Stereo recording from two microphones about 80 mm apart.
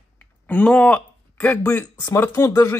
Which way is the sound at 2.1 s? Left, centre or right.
Left.